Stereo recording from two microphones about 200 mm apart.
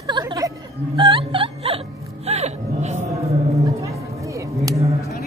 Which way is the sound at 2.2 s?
35° right (ahead or behind).